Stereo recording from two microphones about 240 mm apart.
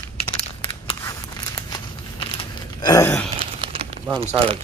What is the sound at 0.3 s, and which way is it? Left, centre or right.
Crumpling, left.